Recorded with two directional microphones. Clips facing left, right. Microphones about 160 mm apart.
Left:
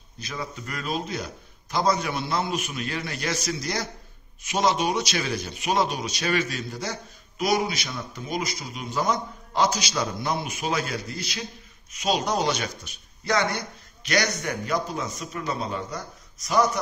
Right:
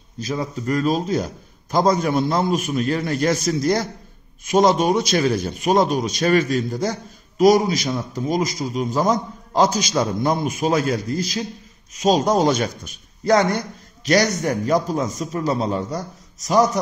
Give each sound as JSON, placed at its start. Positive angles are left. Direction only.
{"t": 0.2, "sound": "a man's voice", "side_deg": -40}